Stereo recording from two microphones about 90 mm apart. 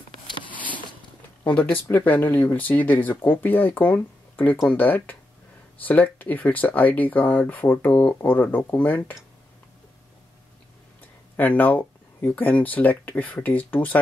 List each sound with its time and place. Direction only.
1.4 s speech: 20° left (ahead or behind)
11.3 s speech: 20° left (ahead or behind)